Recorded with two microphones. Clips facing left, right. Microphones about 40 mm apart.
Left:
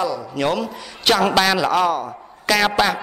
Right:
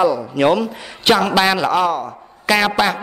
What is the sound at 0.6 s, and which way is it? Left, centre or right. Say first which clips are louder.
A man's voice: right 4 dB; centre.